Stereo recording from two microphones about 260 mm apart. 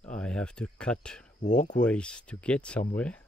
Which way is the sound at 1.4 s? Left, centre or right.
Left.